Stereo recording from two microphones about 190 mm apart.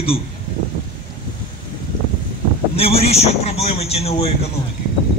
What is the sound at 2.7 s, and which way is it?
A man's voice, 30° left (ahead or behind).